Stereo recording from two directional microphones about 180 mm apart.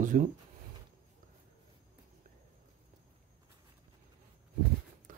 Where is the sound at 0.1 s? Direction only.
50° right (ahead or behind).